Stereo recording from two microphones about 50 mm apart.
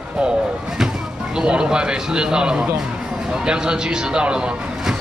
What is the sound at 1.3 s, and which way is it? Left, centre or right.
Speech, centre.